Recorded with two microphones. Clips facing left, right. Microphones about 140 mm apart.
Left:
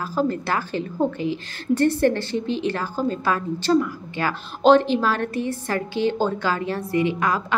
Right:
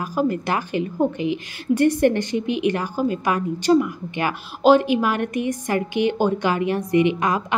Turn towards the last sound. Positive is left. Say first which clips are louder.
# right 1 dB
turn(degrees=-20)  # may be behind; listen again after turning